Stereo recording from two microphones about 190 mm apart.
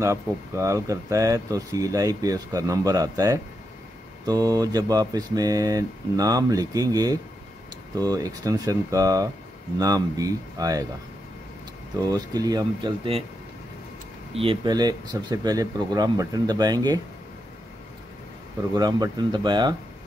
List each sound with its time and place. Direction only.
0.0 s speech: 15° right (ahead or behind)
12.0 s speech: 20° right (ahead or behind)
14.3 s speech: 30° right (ahead or behind)
18.7 s speech: 20° right (ahead or behind)